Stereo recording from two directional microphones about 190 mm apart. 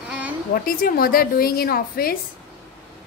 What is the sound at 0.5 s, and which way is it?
A woman's voice, 50° left (ahead or behind).